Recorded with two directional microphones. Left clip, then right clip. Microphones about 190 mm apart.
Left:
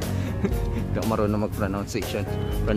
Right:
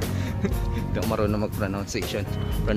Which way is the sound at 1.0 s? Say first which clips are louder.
Left 1 dB; 10° left (ahead or behind).